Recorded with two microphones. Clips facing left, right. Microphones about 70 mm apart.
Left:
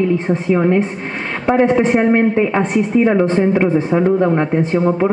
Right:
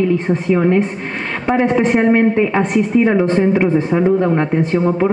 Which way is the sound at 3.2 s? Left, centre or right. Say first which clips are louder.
Even; left.